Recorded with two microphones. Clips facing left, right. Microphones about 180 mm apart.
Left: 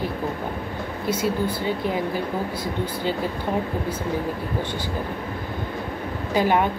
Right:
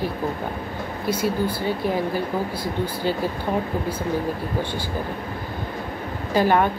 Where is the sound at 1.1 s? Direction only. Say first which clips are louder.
Right 1 dB; 20° left (ahead or behind).